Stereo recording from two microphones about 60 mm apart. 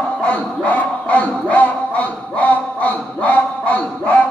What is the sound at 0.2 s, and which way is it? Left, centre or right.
Music, centre.